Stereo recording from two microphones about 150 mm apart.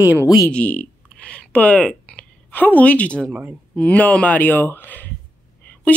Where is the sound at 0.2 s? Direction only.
20° left (ahead or behind).